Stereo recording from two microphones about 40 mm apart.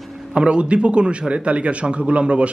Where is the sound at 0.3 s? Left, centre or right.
Right.